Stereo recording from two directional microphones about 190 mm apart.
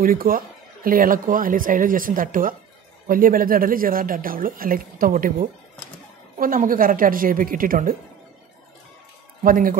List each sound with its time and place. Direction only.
0.0 s speech: 50° right (ahead or behind)
9.4 s speech: 45° right (ahead or behind)